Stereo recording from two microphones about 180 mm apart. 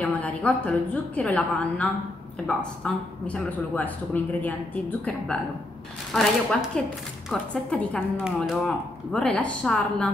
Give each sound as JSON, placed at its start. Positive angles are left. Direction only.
{"t": 0.0, "sound": "a man's voice", "side_deg": 10}